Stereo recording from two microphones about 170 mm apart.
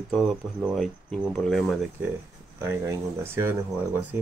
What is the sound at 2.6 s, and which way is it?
Speech, 15° right (ahead or behind).